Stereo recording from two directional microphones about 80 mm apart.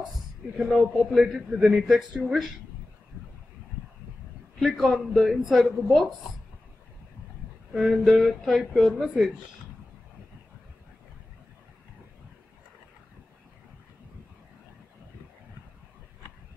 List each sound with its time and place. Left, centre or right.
0.6 s a man's voice: centre
4.6 s a man's voice: centre
7.7 s a man's voice: centre